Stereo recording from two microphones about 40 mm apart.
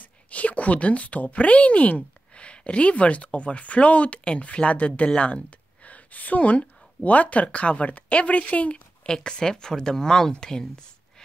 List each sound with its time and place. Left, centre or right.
0.0 s speech: left
5.9 s speech: left
9.0 s speech: centre